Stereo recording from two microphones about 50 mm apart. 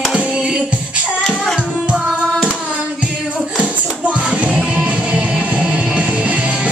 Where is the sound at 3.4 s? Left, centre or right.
Right.